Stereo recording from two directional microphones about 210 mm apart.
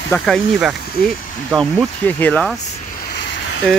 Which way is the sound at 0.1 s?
Centre (ahead or behind).